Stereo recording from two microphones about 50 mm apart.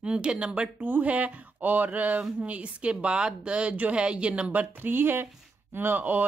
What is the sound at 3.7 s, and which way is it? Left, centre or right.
Speech, right.